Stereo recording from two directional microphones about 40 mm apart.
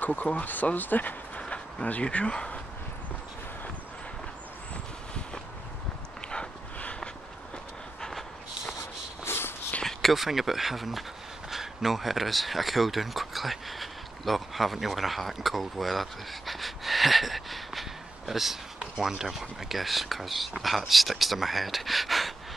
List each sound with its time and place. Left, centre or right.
0.0 s speech: left
0.7 s speech: left
1.5 s speech: left
8.1 s walk: centre
9.2 s a sound: left
10.1 s speech: centre
11.5 s a sound: centre
18.9 s speech: centre